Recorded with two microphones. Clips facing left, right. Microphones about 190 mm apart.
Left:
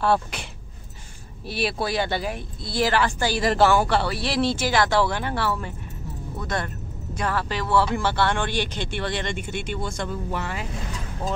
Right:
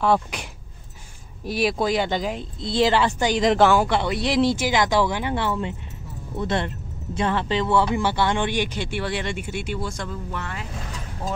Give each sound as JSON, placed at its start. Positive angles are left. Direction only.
{"t": 0.0, "sound": "speech", "side_deg": -15}
{"t": 3.4, "sound": "speech", "side_deg": 5}
{"t": 3.7, "sound": "speech", "side_deg": -15}